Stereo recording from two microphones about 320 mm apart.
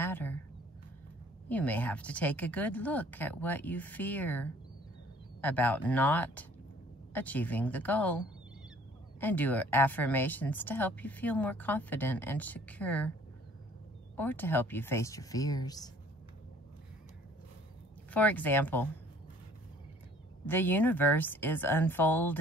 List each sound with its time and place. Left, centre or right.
0.0 s a sound: centre
1.5 s speech: centre
9.2 s speech: centre
14.1 s speech: centre
18.1 s speech: centre
20.4 s speech: centre